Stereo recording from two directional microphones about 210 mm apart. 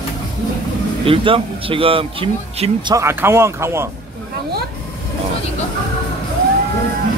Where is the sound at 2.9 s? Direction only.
10° right (ahead or behind).